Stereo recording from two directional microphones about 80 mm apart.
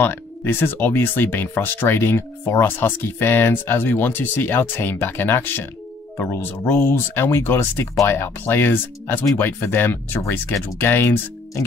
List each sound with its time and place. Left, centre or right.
0.0 s speech: left